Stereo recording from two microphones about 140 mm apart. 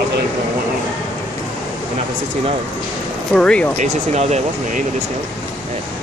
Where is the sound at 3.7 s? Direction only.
55° right (ahead or behind).